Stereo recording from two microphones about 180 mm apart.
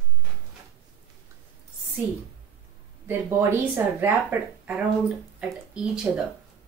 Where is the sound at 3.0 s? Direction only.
15° right (ahead or behind).